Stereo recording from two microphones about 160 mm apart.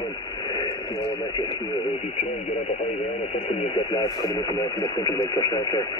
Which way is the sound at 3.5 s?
35° left (ahead or behind).